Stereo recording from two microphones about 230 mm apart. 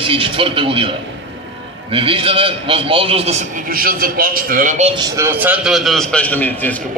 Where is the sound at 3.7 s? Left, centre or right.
Right.